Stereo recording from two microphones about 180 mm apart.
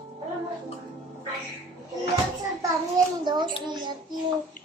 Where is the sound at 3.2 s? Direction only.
25° right (ahead or behind).